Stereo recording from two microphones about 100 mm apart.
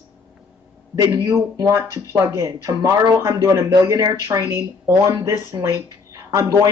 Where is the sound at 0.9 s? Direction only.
40° right (ahead or behind).